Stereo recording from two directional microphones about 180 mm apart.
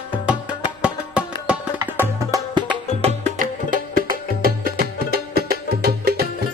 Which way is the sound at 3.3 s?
50° right (ahead or behind).